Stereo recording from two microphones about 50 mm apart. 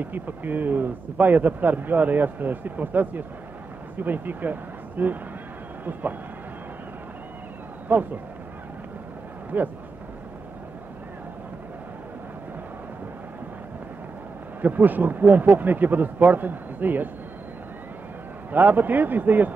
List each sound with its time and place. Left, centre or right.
0.0 s speech: right
7.9 s speech: right
9.5 s speech: right
14.6 s speech: right
18.5 s speech: right